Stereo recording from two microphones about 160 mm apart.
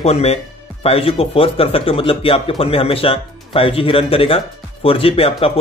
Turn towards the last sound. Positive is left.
turn(degrees=35)  # may be behind; listen again after turning